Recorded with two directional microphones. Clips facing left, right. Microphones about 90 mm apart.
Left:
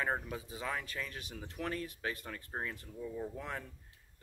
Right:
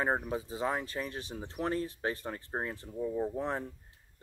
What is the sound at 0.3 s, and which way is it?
Speech, 30° right (ahead or behind).